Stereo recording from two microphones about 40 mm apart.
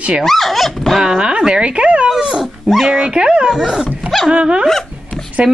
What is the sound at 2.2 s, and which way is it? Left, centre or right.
Speech, centre.